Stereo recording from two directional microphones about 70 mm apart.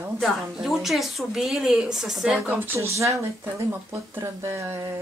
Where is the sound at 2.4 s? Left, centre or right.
Right.